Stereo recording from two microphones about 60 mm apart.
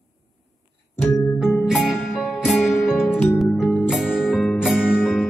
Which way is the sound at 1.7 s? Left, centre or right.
Centre.